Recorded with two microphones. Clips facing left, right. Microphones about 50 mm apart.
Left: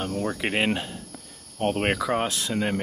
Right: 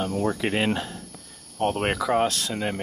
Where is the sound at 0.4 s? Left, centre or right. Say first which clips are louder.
Even; centre.